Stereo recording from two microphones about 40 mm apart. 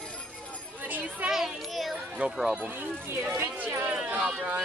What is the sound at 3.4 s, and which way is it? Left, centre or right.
Speech, right.